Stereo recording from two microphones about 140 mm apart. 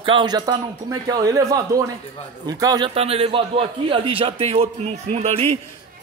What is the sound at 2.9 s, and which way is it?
A man's voice, 45° right (ahead or behind).